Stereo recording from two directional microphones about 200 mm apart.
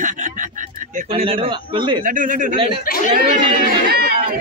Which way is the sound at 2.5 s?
25° right (ahead or behind).